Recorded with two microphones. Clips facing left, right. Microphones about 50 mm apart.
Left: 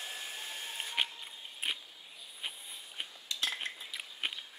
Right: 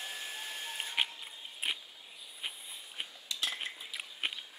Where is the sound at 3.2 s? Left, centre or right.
Left.